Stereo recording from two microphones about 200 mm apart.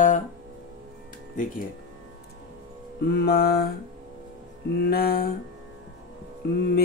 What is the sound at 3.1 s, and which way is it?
Mantra, 50° left (ahead or behind).